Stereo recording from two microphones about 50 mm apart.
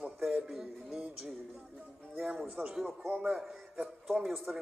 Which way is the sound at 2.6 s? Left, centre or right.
Right.